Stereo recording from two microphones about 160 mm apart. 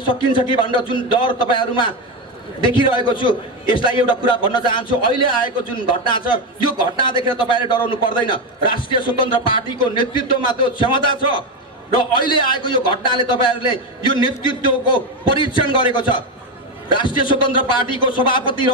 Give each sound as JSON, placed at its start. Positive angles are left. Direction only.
{"t": 0.1, "sound": "a man's voice", "side_deg": 30}